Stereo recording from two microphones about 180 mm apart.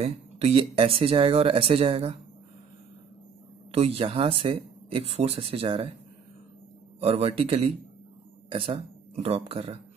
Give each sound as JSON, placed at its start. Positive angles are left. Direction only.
{"t": 0.0, "sound": "speech", "side_deg": -35}
{"t": 3.7, "sound": "speech", "side_deg": -30}
{"t": 7.0, "sound": "speech", "side_deg": -35}